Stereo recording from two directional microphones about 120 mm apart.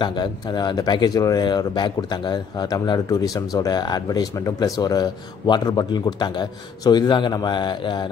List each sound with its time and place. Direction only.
0.0 s speech: 40° left (ahead or behind)